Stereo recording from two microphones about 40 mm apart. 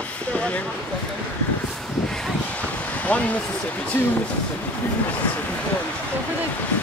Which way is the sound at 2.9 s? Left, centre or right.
Left.